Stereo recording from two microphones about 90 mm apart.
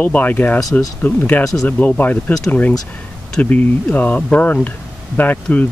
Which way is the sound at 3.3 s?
20° left (ahead or behind).